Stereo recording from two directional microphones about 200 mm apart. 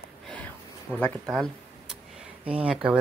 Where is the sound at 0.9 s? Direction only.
5° left (ahead or behind).